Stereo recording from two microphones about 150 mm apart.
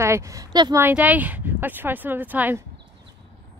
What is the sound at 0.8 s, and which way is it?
A woman's voice, 10° right (ahead or behind).